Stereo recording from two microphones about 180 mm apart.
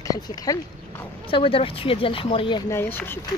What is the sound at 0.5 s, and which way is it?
Speech, 20° left (ahead or behind).